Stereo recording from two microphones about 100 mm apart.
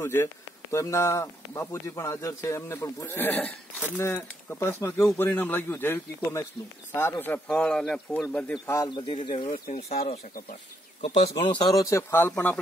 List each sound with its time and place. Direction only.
0.0 s speech: 25° left (ahead or behind)
7.4 s speech: 10° left (ahead or behind)
8.6 s speech: 35° left (ahead or behind)
8.9 s speech: 55° left (ahead or behind); by 11.2 s 85° left
11.3 s speech: 55° left (ahead or behind); by 12.0 s 35° left (ahead or behind)
12.1 s speech: 20° left (ahead or behind)